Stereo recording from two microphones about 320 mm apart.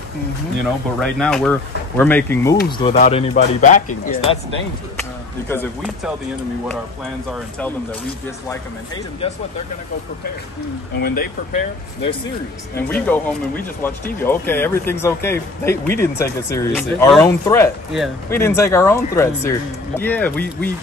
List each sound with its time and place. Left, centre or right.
0.9 s speech: centre
2.8 s speech: centre
5.5 s speech: centre
8.5 s speech: centre
11.0 s speech: left
12.7 s speech: centre